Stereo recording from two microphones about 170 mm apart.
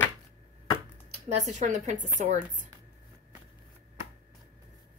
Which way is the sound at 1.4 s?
45° right (ahead or behind).